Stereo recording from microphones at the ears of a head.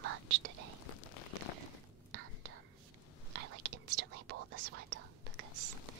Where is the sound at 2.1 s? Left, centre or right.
Right.